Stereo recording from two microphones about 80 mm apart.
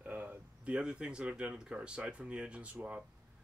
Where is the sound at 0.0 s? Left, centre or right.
Centre.